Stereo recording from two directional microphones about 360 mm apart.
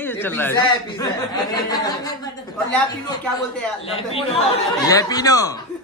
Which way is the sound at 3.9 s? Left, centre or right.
Centre.